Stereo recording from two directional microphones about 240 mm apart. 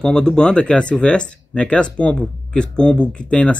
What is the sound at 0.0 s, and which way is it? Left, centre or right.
Speech, centre.